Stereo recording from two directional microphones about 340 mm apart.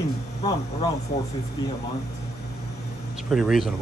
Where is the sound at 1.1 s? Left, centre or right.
Centre.